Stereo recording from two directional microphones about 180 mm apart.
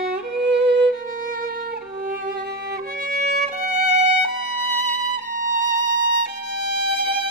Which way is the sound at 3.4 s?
40° right (ahead or behind).